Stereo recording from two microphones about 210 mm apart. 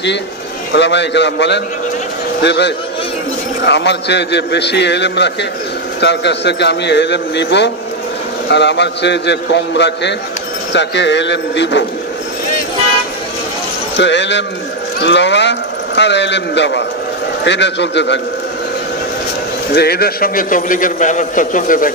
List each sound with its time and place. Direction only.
0.7 s a man's voice: 55° left (ahead or behind)
13.9 s speech: 55° left (ahead or behind)
19.7 s a man's voice: 50° left (ahead or behind)